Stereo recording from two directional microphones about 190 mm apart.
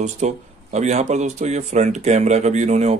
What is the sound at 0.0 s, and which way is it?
Speech, 35° right (ahead or behind).